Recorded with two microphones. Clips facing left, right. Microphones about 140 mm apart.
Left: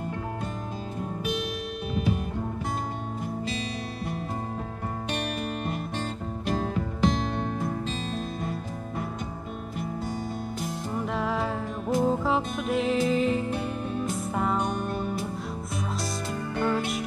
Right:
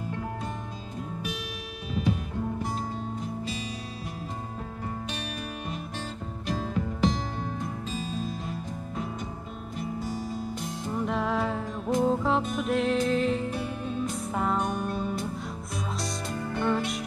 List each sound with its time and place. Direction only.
8.0 s music: 65° left (ahead or behind)
10.9 s music: centre (ahead or behind)
16.6 s music: centre (ahead or behind)